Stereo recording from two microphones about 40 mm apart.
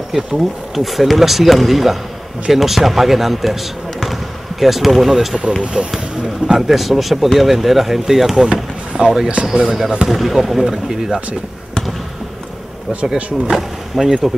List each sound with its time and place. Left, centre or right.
0.1 s speech: centre
4.0 s basketball bounce: centre
5.6 s speech: right
6.4 s speech: centre
10.0 s speech: centre
13.0 s speech: centre